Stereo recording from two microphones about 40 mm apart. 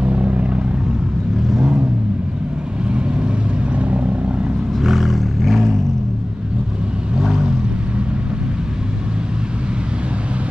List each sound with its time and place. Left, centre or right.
0.0 s vehicle: right
3.7 s vehicle: right
4.7 s vehicle: centre
7.2 s vehicle: centre